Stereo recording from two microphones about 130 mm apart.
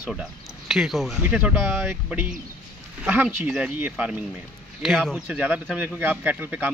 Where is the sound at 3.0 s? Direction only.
10° right (ahead or behind).